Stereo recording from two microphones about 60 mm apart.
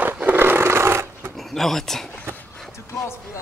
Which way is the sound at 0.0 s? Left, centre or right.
Right.